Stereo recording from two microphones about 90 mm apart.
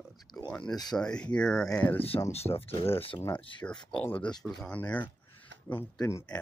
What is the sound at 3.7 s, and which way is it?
Speech, 65° left (ahead or behind).